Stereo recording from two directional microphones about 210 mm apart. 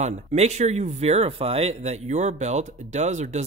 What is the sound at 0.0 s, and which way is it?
Speech, 30° right (ahead or behind).